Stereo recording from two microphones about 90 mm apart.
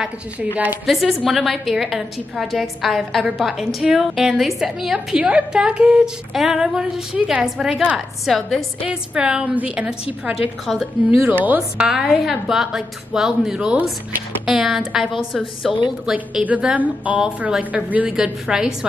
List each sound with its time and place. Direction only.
0.8 s a woman's voice: centre (ahead or behind)
8.8 s a woman's voice: 10° right (ahead or behind)
11.2 s a woman's voice: 20° right (ahead or behind)
11.9 s a woman's voice: 5° right (ahead or behind)
16.4 s a woman's voice: 15° right (ahead or behind)